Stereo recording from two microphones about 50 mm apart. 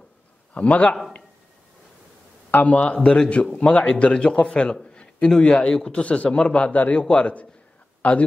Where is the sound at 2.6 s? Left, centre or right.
Left.